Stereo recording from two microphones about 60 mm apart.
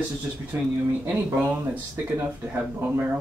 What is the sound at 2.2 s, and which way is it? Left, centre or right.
Speech, right.